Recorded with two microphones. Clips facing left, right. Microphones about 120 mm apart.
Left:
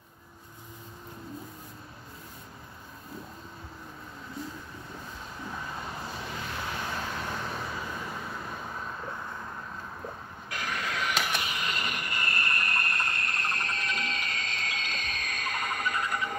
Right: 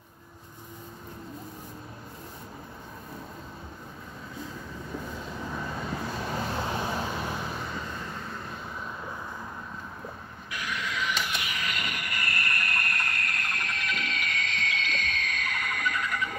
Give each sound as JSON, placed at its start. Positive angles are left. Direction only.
{"t": 6.3, "sound": "vehicle", "side_deg": -35}
{"t": 10.5, "sound": "printer", "side_deg": 45}
{"t": 11.5, "sound": "vehicle", "side_deg": 30}